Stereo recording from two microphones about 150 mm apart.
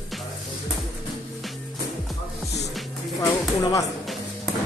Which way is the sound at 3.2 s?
25° left (ahead or behind).